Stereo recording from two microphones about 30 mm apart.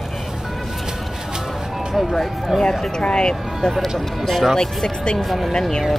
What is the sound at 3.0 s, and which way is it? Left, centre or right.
Speech, left.